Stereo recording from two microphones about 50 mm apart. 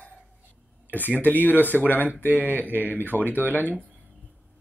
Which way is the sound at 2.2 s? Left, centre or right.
Right.